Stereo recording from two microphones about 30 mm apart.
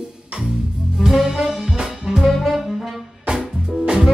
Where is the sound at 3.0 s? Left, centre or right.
Centre.